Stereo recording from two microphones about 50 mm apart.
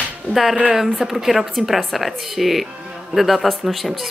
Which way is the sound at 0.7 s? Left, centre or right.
Centre.